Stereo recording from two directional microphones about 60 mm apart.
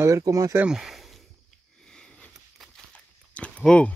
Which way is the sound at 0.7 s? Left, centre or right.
Centre.